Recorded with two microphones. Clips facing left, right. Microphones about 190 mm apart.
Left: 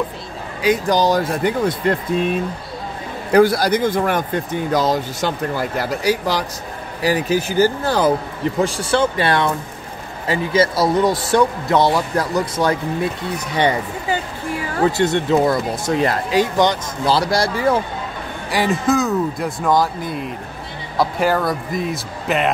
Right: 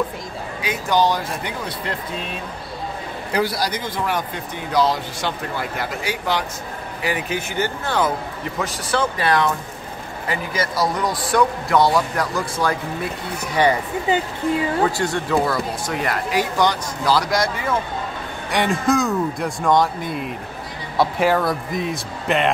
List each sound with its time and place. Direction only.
0.6 s speech: 35° left (ahead or behind)
3.3 s speech: 55° left (ahead or behind); by 12.7 s 20° left (ahead or behind)
14.0 s speech: 20° right (ahead or behind)
14.9 s speech: 25° left (ahead or behind)
18.5 s speech: 5° left (ahead or behind)